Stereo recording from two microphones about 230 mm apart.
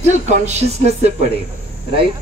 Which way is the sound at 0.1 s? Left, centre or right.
Right.